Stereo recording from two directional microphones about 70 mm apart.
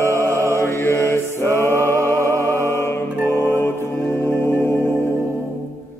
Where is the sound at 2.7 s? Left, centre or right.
Left.